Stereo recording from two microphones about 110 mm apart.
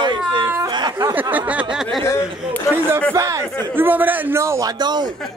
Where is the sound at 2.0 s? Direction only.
25° left (ahead or behind).